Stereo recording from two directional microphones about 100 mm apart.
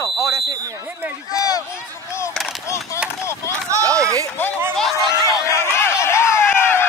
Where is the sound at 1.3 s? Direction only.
35° left (ahead or behind).